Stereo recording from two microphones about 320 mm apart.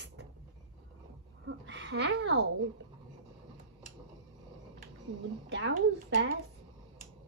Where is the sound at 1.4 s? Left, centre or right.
Right.